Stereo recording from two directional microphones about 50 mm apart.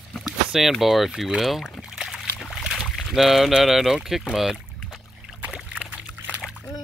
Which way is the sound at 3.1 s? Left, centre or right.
Centre.